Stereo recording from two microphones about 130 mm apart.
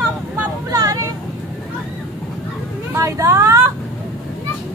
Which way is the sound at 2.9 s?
25° right (ahead or behind).